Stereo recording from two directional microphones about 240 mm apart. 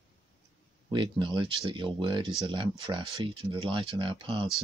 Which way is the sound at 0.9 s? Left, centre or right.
Centre.